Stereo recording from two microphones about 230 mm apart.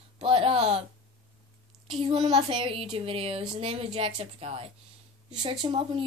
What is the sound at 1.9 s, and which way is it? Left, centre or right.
A woman's voice, right.